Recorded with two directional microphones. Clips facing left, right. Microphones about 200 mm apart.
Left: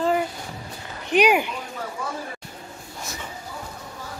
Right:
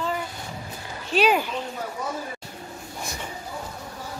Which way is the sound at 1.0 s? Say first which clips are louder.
Left 2 dB; 15° left (ahead or behind).